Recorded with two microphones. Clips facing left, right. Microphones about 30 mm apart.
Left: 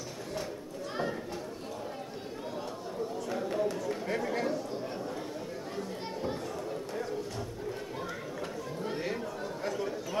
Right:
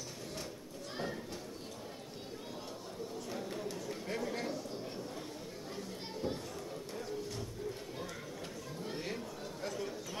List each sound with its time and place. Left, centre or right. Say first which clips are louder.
3.3 s a sound: left 11 dB; centre
3.7 s chatter: left 7 dB; centre
8.8 s chatter: left 6 dB; centre